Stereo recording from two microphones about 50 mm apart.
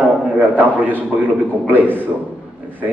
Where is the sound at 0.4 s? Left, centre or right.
Right.